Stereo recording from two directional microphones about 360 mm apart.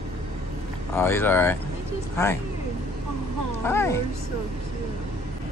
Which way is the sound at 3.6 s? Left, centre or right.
Centre.